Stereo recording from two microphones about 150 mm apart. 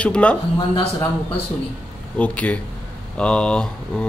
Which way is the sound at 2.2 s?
10° left (ahead or behind).